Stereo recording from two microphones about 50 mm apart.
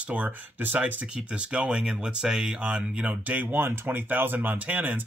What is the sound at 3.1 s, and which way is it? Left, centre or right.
Speech, right.